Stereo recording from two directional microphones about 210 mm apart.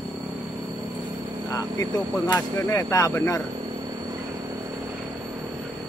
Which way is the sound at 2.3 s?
10° left (ahead or behind).